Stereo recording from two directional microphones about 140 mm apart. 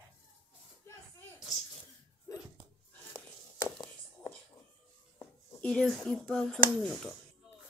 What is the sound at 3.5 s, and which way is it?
Whispering, 20° left (ahead or behind).